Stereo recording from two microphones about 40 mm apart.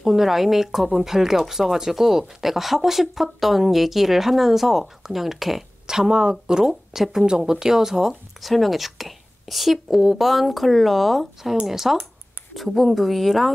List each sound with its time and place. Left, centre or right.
0.0 s speech: centre
5.9 s speech: centre
8.1 s speech: centre